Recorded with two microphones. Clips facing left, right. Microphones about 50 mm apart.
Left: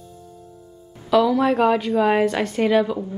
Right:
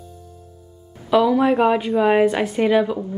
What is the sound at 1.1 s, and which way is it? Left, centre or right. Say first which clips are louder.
A woman's voice: right 1 dB; centre.